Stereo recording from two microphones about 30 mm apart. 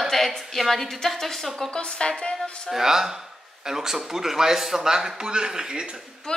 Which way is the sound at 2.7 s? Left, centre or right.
Centre.